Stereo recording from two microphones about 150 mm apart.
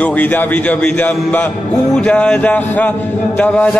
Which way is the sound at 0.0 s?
10° left (ahead or behind).